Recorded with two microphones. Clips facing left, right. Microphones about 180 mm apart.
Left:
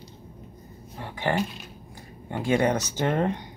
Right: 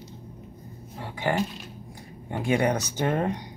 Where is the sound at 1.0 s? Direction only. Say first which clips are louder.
Even; 15° right (ahead or behind).